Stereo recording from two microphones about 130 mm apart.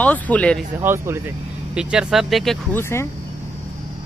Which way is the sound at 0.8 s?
15° right (ahead or behind).